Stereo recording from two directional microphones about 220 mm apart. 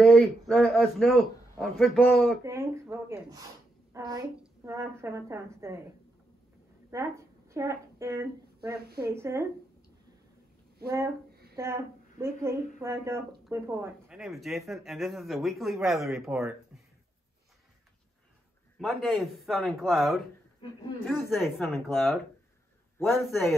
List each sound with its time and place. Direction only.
0.0 s a man's voice: 5° left (ahead or behind)
2.4 s a woman's voice: 10° right (ahead or behind)
6.9 s a woman's voice: 15° right (ahead or behind)
10.8 s speech: 45° right (ahead or behind)
11.5 s a woman's voice: 10° right (ahead or behind)
14.0 s a man's voice: centre (ahead or behind)
18.8 s a man's voice: centre (ahead or behind)
21.3 s a man's voice: centre (ahead or behind)
21.6 s a man's voice: 10° left (ahead or behind)
22.9 s a man's voice: 10° left (ahead or behind)